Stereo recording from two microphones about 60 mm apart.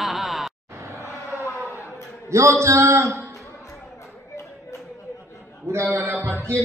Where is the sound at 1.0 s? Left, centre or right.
Left.